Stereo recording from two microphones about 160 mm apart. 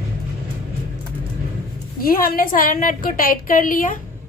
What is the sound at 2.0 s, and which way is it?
A woman's voice, 70° left (ahead or behind).